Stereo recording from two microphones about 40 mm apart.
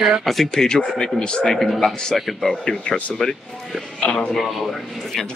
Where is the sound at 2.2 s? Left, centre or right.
Centre.